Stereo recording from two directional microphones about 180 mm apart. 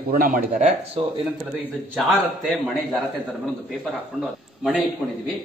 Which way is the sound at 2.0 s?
Centre (ahead or behind).